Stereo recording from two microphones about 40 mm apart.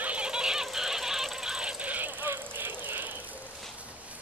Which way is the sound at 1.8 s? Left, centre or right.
Right.